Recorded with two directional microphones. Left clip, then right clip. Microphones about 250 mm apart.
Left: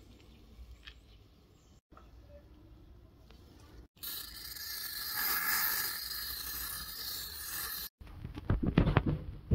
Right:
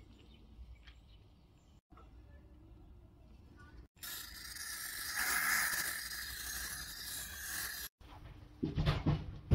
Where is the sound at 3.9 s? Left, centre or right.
Centre.